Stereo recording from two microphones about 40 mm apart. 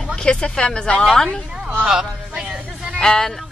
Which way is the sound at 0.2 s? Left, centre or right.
Left.